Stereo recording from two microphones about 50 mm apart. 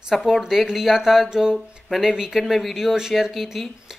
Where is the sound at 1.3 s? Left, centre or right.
Centre.